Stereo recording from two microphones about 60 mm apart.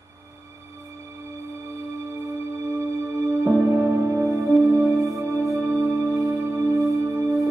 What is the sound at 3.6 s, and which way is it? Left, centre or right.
Music, right.